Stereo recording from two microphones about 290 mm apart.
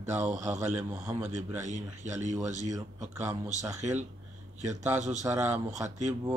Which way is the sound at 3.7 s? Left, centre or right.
Right.